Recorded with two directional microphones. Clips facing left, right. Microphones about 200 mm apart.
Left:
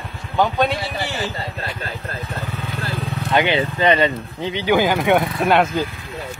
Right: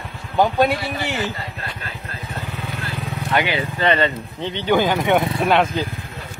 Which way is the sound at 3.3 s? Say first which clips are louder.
Left 3 dB; 25° left (ahead or behind).